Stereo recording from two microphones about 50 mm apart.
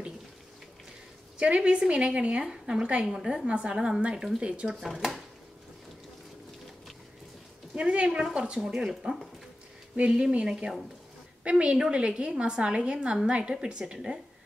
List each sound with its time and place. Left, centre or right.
1.4 s a woman's voice: right
3.1 s a woman's voice: centre
3.4 s a woman's voice: centre
4.6 s a woman's voice: centre
7.7 s a woman's voice: right